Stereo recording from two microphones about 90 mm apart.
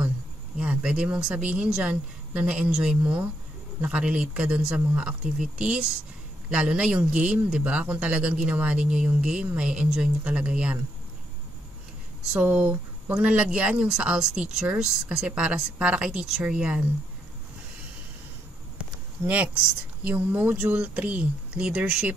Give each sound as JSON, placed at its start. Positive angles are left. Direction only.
{"t": 0.6, "sound": "speech", "side_deg": -15}
{"t": 12.3, "sound": "speech", "side_deg": -15}
{"t": 19.2, "sound": "speech", "side_deg": -15}